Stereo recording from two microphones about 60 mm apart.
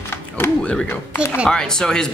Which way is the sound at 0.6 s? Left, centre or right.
Centre.